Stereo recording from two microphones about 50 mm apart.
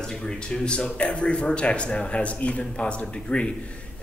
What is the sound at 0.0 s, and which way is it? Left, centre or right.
Speech, centre.